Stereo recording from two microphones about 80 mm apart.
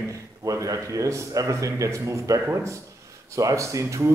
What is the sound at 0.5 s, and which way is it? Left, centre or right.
A man's voice, right.